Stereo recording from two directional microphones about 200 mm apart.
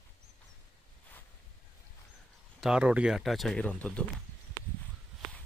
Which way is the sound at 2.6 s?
5° right (ahead or behind).